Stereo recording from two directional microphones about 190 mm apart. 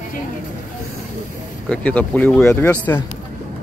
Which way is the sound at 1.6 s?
5° left (ahead or behind).